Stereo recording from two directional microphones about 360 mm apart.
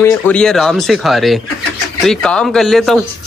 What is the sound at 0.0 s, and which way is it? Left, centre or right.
Speech, centre.